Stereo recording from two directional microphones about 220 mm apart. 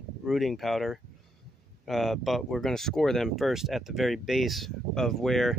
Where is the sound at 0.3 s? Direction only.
Centre (ahead or behind).